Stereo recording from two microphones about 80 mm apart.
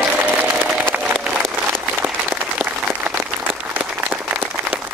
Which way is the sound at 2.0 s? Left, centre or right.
Right.